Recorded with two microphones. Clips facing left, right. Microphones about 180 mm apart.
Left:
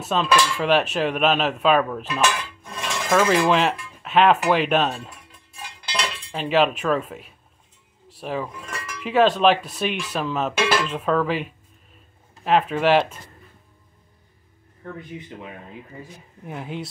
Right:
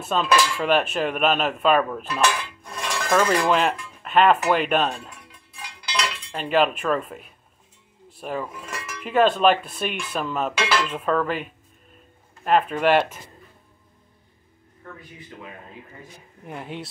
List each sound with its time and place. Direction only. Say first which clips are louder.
0.0 s speech: even; centre (ahead or behind)
2.1 s dishes: even; centre (ahead or behind)
3.1 s speech: left 2 dB; centre (ahead or behind)
6.3 s speech: left 1 dB; centre (ahead or behind)
15.0 s speech: left 7 dB; 20° left (ahead or behind)
16.4 s speech: left 2 dB; centre (ahead or behind)